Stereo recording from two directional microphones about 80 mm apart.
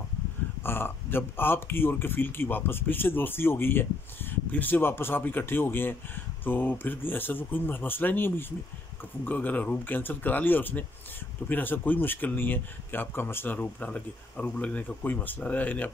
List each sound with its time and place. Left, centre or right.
0.7 s speech: left